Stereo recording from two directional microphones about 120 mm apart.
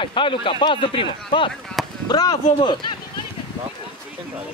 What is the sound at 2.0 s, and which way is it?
Speech, 35° left (ahead or behind).